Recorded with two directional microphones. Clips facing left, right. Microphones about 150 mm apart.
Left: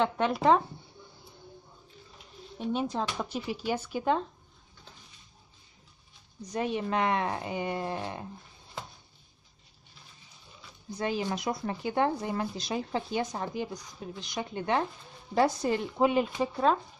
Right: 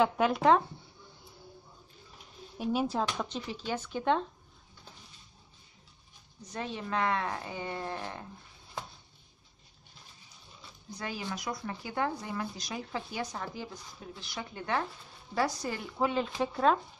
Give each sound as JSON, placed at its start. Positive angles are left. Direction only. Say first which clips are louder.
{"t": 0.0, "sound": "speech", "louder": "even", "side_deg": 0}
{"t": 2.6, "sound": "speech", "louder": "even", "side_deg": -5}
{"t": 3.1, "sound": "speech", "louder": "left 2 dB", "side_deg": 10}
{"t": 6.5, "sound": "speech", "louder": "left 5 dB", "side_deg": 15}
{"t": 11.0, "sound": "speech", "louder": "left 7 dB", "side_deg": 25}
{"t": 16.3, "sound": "speech", "louder": "left 1 dB", "side_deg": 5}